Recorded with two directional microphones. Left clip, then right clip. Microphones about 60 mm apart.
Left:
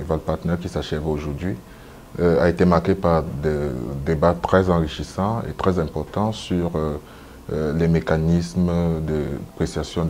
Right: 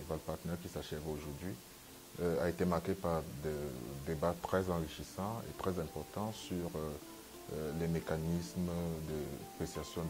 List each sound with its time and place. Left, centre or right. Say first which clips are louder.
0.1 s a man's voice: left 18 dB; centre